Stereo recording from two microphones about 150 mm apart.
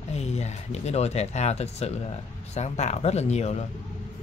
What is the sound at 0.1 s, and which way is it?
Speech, 45° left (ahead or behind).